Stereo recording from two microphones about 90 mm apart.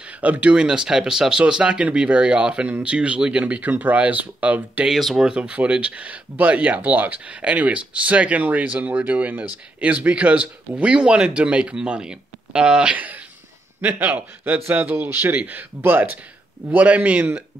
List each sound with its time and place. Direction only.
0.2 s speech: 15° right (ahead or behind)
4.8 s speech: 5° right (ahead or behind)